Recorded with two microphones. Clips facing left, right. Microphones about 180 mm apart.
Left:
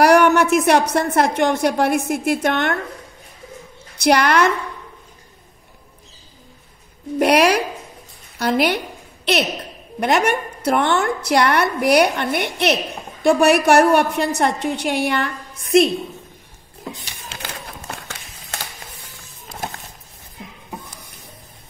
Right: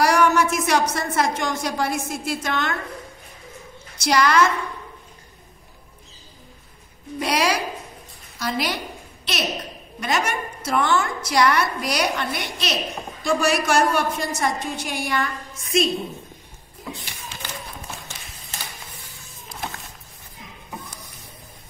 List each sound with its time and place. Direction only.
0.0 s a woman's voice: 65° left (ahead or behind)
4.0 s a woman's voice: 65° left (ahead or behind)
7.2 s a woman's voice: 60° left (ahead or behind)
17.3 s a sound: 65° left (ahead or behind)